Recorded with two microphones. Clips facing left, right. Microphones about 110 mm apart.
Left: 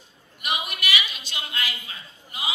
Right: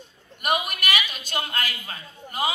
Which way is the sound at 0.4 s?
45° right (ahead or behind).